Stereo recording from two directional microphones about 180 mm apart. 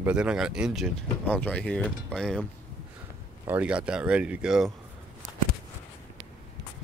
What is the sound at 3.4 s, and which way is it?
Speech, 10° right (ahead or behind).